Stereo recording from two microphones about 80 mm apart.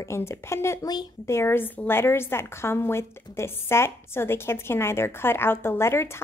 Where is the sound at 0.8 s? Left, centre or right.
Left.